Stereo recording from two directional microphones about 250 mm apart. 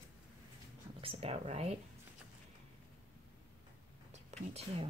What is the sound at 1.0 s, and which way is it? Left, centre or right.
Speech, right.